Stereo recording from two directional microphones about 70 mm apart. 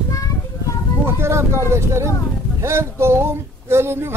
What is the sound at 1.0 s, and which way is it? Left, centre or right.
Speech, right.